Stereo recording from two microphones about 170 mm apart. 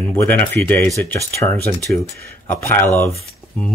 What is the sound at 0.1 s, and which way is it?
Speech, 10° left (ahead or behind).